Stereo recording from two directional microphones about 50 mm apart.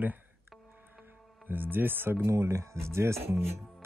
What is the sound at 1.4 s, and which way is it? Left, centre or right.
Speech, right.